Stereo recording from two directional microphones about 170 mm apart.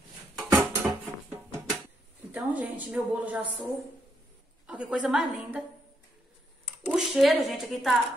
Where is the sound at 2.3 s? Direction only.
10° right (ahead or behind).